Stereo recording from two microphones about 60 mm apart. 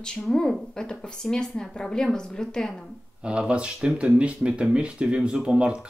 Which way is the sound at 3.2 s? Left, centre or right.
Centre.